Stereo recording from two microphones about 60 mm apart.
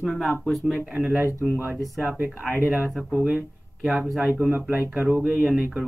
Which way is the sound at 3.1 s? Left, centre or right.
Centre.